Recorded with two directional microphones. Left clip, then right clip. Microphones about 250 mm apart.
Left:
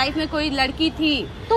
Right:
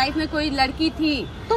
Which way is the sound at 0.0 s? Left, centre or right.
Centre.